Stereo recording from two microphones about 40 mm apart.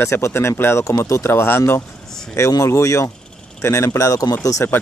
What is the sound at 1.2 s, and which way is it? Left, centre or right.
Speech, left.